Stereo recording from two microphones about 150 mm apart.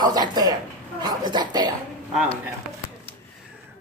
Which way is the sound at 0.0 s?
30° right (ahead or behind).